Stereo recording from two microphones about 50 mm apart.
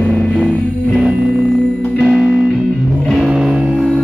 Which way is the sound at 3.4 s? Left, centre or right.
Centre.